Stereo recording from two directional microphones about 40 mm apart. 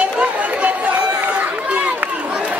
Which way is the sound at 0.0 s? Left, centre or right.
Right.